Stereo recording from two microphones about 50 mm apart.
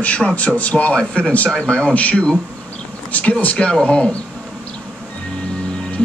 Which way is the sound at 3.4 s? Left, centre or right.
Left.